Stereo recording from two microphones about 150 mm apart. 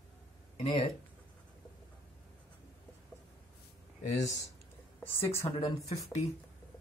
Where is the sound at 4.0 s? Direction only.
50° left (ahead or behind).